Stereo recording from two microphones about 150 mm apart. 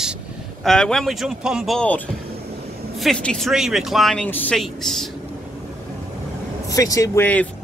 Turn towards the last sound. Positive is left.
turn(degrees=10)  # may be behind; listen again after turning